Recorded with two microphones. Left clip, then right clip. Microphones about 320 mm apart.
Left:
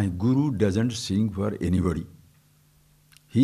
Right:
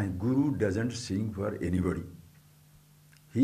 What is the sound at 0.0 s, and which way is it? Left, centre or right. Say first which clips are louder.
A man's voice: left 4 dB; left.